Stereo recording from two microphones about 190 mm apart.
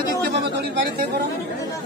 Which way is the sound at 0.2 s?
60° right (ahead or behind).